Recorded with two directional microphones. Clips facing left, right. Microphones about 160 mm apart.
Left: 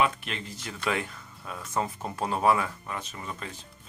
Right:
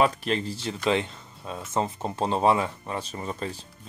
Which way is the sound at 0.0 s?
35° right (ahead or behind).